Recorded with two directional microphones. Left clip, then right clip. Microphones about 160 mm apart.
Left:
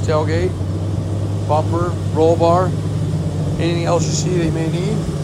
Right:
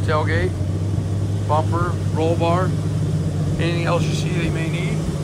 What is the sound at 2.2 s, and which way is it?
Speech, 35° left (ahead or behind).